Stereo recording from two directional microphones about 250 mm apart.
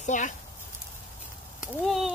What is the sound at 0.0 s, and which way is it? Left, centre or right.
Speech, left.